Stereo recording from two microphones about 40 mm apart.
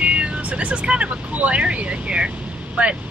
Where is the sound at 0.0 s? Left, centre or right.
Right.